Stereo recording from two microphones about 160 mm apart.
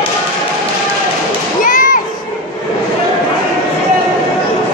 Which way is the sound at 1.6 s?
55° left (ahead or behind).